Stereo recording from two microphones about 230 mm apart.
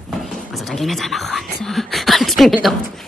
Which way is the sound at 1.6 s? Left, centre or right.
Centre.